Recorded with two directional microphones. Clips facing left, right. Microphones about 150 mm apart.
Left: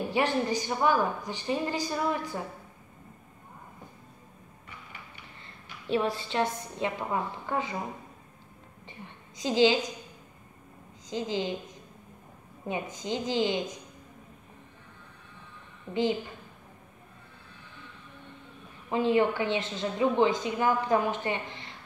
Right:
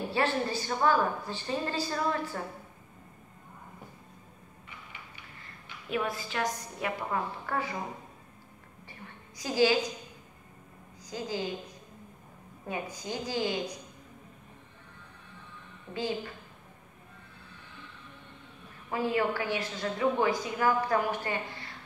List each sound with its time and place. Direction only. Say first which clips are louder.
0.1 s a woman's voice: left 2 dB; 15° left (ahead or behind)
5.4 s a woman's voice: left 1 dB; 30° left (ahead or behind)
9.4 s a woman's voice: left 2 dB; 20° left (ahead or behind)
11.1 s a woman's voice: left 3 dB; 20° left (ahead or behind)
15.9 s a woman's voice: left 6 dB; 20° left (ahead or behind)
18.9 s a woman's voice: left 4 dB; 20° left (ahead or behind)